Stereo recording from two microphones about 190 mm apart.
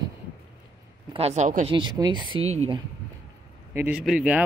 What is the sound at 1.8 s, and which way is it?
Speech, 25° right (ahead or behind).